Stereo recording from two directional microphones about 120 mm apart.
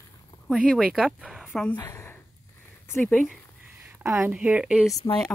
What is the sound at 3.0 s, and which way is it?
Speech, 10° left (ahead or behind).